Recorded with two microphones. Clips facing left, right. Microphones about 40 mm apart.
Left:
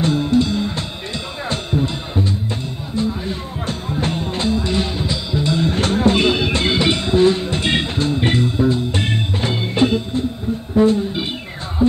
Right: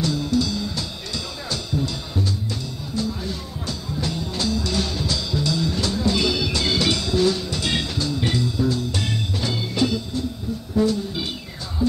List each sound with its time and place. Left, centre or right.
0.0 s music: left